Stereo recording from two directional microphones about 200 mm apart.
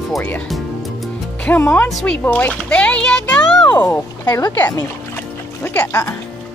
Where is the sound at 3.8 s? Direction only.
10° left (ahead or behind).